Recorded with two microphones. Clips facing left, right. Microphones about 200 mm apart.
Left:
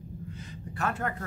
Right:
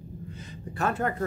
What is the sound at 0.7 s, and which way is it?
Speech, 30° right (ahead or behind).